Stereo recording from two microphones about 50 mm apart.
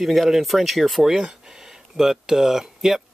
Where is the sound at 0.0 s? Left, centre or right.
Centre.